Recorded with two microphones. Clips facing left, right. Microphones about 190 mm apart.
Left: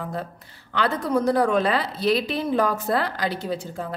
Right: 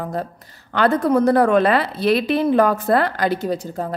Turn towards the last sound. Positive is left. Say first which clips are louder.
# right 5 dB
turn(degrees=-40)  # may be behind; listen again after turning